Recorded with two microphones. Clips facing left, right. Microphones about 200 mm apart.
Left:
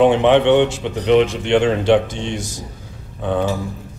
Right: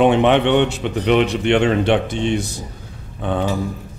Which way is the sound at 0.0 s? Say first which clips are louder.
Left 1 dB; 60° right (ahead or behind).